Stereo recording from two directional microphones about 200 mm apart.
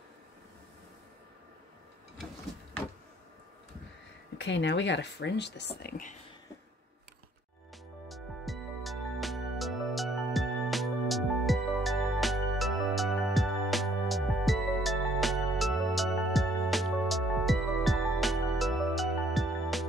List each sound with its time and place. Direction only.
4.4 s speech: 65° left (ahead or behind); by 6.1 s 45° left (ahead or behind)
8.1 s music: centre (ahead or behind)